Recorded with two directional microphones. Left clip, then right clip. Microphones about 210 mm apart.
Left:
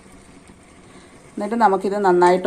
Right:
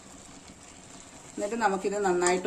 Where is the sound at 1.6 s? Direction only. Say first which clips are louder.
Left 11 dB; 25° left (ahead or behind).